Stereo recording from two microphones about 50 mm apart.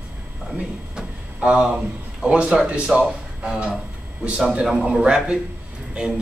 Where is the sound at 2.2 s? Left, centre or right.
Right.